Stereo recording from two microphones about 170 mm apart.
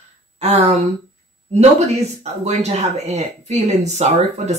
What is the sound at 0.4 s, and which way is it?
Speech, 40° right (ahead or behind).